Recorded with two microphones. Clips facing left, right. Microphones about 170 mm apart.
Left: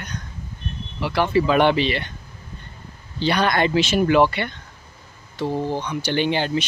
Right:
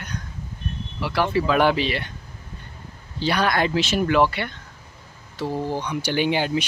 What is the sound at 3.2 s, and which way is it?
Speech, 5° right (ahead or behind).